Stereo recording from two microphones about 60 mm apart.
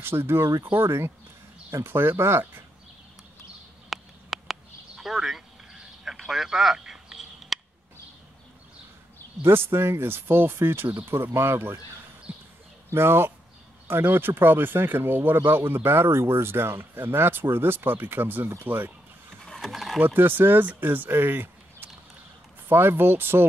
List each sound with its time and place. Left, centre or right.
0.0 s speech: right
3.9 s a sound: centre
9.4 s speech: right
12.3 s a sound: right
12.9 s speech: right
19.4 s mechanisms: centre
20.0 s speech: right